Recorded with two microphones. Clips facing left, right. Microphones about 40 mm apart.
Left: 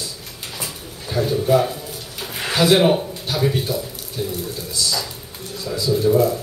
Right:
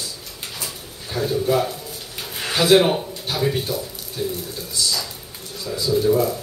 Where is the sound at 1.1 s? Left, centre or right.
Centre.